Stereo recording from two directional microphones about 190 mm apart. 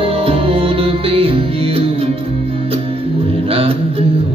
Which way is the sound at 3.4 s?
30° right (ahead or behind).